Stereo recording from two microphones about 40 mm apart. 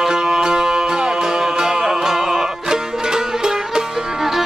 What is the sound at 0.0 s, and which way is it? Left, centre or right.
Music, centre.